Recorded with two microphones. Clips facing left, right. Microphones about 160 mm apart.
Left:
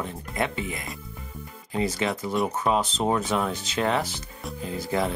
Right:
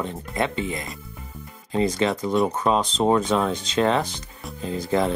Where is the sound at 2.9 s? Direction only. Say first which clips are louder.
Right 5 dB; 30° right (ahead or behind).